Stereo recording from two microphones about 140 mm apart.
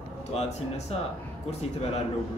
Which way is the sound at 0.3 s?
50° left (ahead or behind).